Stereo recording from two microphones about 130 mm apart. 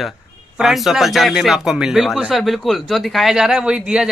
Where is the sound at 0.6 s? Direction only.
Centre (ahead or behind).